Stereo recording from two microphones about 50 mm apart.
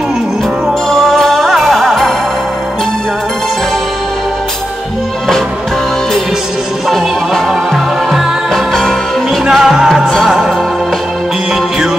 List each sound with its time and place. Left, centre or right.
0.8 s music: centre
6.9 s music: centre
9.5 s music: centre